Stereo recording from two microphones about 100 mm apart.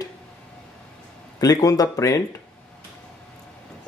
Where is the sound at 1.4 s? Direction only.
40° left (ahead or behind).